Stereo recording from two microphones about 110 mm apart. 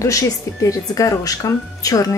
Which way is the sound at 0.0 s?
30° left (ahead or behind).